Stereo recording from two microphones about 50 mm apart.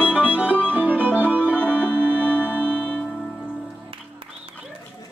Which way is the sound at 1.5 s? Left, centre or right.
Left.